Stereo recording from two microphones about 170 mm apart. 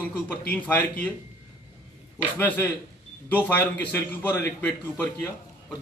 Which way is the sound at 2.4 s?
10° left (ahead or behind).